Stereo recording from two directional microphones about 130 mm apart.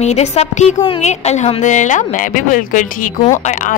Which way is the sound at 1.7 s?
70° left (ahead or behind).